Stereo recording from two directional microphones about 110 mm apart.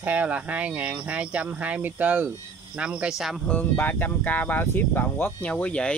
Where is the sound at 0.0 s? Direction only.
15° right (ahead or behind).